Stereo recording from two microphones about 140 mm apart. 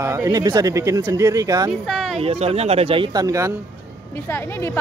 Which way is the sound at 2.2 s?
45° right (ahead or behind).